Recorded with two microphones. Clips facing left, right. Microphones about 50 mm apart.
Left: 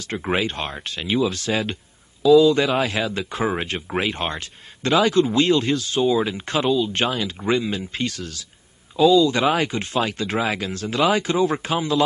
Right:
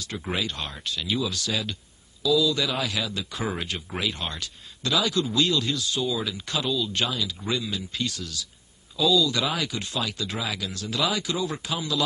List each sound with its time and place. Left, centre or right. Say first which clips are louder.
0.0 s speech: left 7 dB; left